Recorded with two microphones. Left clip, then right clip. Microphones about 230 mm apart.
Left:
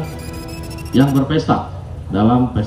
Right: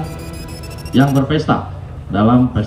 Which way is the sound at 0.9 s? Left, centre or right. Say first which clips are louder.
Right 1 dB; right.